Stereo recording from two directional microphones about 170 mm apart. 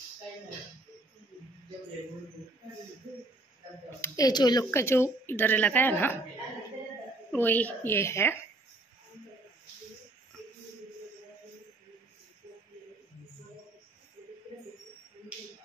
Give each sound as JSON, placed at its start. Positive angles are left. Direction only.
{"t": 4.0, "sound": "a woman's voice", "side_deg": 20}
{"t": 7.2, "sound": "a woman's voice", "side_deg": 10}